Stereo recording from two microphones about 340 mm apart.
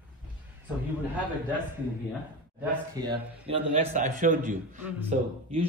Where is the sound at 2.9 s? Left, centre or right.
Centre.